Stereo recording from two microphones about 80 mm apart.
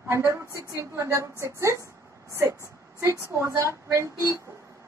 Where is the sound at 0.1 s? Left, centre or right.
Right.